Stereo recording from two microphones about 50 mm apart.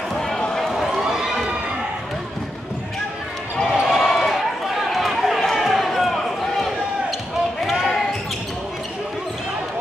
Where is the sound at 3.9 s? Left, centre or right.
Centre.